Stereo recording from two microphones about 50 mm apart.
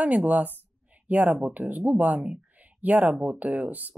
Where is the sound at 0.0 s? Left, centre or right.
Right.